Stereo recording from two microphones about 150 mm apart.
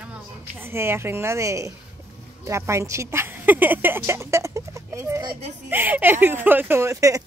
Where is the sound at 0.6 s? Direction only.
15° right (ahead or behind).